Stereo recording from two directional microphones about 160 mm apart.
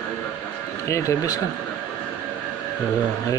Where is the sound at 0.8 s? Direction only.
20° left (ahead or behind).